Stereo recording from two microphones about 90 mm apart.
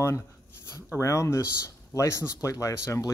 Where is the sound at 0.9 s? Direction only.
35° left (ahead or behind).